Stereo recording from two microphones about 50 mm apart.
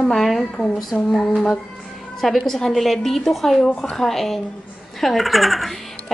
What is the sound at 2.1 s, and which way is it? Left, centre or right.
A woman's voice, centre.